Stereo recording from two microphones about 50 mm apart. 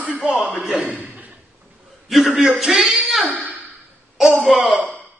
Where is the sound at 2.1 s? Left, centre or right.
Centre.